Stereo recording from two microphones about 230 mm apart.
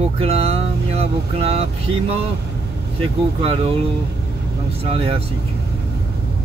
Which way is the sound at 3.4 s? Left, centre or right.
Right.